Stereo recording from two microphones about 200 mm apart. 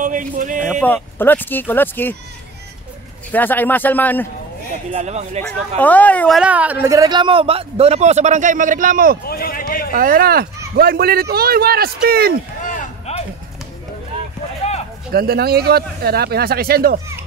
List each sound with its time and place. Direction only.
0.0 s speech: 40° right (ahead or behind)
0.7 s speech: centre (ahead or behind)
3.3 s speech: 10° left (ahead or behind)
4.9 s speech: 35° right (ahead or behind)
5.8 s speech: 5° left (ahead or behind); by 9.2 s 45° right (ahead or behind)
9.2 s a man's voice: 50° left (ahead or behind)
9.9 s speech: 45° right (ahead or behind)
12.6 s a sound: 35° left (ahead or behind)
15.1 s speech: 50° right (ahead or behind)